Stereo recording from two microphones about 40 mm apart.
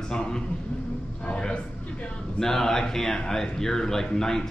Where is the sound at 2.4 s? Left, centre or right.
Centre.